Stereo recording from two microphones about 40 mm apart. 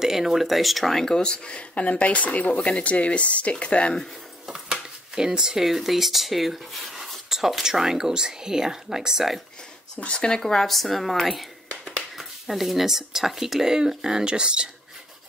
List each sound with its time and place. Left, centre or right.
0.0 s speech: centre
1.2 s speech: left
4.5 s speech: centre
10.0 s speech: centre
10.4 s speech: centre; by 14.7 s right